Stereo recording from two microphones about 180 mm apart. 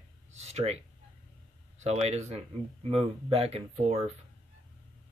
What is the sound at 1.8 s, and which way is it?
Speech, 40° right (ahead or behind).